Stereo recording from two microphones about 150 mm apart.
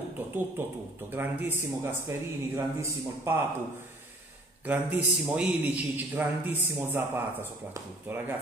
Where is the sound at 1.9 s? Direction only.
15° right (ahead or behind).